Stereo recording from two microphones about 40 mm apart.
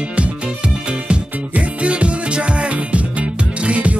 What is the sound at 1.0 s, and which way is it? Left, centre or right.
Music, right.